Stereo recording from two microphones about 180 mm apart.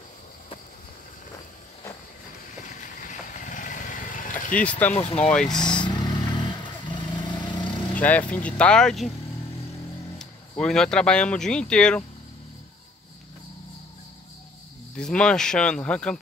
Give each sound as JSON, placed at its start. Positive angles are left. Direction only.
{"t": 2.6, "sound": "vehicle", "side_deg": 45}
{"t": 4.6, "sound": "speech", "side_deg": 10}
{"t": 5.0, "sound": "speech", "side_deg": 35}
{"t": 5.3, "sound": "speech", "side_deg": 5}
{"t": 5.8, "sound": "vehicle", "side_deg": 25}
{"t": 7.9, "sound": "speech", "side_deg": 10}
{"t": 10.6, "sound": "speech", "side_deg": 5}
{"t": 15.0, "sound": "speech", "side_deg": 5}